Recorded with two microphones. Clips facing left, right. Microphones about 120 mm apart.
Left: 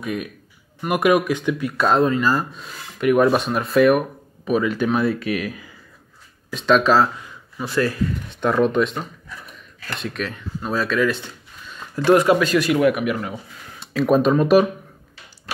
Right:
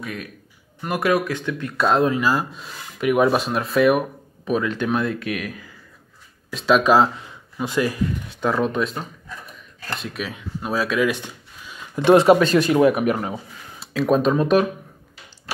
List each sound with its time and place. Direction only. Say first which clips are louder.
0.0 s a man's voice: left 5 dB; 20° left (ahead or behind)
1.8 s speech: even; centre (ahead or behind)
6.5 s speech: even; 5° right (ahead or behind)
8.4 s speech: left 3 dB; centre (ahead or behind)
12.0 s speech: right 2 dB; 25° right (ahead or behind)
13.7 s speech: left 2 dB; centre (ahead or behind)